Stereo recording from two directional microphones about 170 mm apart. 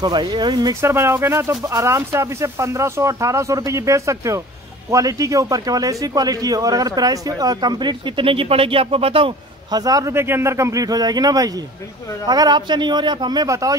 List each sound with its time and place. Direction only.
0.0 s a man's voice: 25° right (ahead or behind)